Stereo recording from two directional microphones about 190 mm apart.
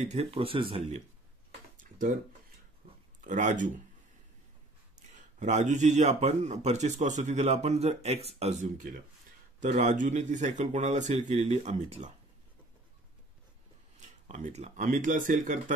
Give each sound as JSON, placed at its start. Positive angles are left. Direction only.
{"t": 0.0, "sound": "a man's voice", "side_deg": -35}
{"t": 1.8, "sound": "a sound", "side_deg": -45}
{"t": 3.3, "sound": "a man's voice", "side_deg": -40}
{"t": 5.1, "sound": "a man's voice", "side_deg": -40}
{"t": 13.9, "sound": "speech", "side_deg": -40}